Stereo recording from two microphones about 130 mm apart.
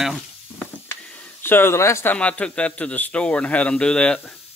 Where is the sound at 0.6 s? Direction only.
10° left (ahead or behind).